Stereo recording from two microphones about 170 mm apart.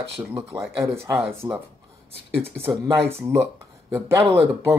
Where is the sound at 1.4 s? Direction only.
20° right (ahead or behind).